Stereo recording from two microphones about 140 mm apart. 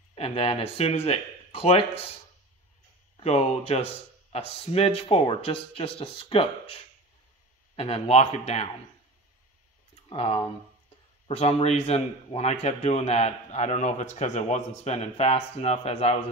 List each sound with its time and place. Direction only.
0.1 s speech: 45° left (ahead or behind)
3.2 s speech: 45° left (ahead or behind)
10.0 s speech: 40° left (ahead or behind)